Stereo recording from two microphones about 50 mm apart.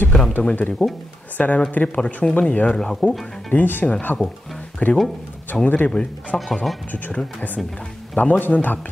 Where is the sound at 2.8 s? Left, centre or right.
Centre.